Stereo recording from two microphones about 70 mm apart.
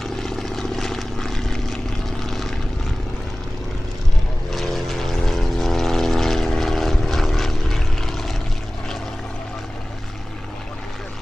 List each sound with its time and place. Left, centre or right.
0.0 s vehicle: centre
4.5 s vehicle: centre